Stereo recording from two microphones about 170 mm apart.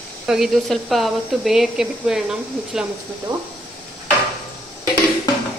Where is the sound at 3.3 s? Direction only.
25° right (ahead or behind).